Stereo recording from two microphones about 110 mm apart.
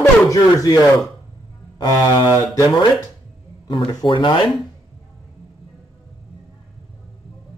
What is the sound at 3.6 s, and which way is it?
Speech, 45° left (ahead or behind).